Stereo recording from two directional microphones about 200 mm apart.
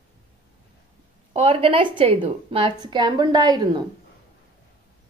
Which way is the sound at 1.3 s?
25° right (ahead or behind).